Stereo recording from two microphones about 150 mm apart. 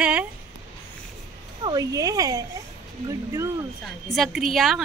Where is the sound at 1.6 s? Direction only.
25° right (ahead or behind).